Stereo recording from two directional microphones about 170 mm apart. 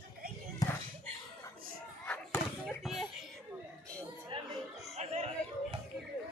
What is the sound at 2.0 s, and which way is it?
Slam, 10° left (ahead or behind).